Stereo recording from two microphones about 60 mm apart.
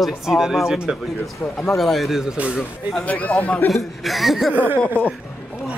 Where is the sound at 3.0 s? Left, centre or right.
Left.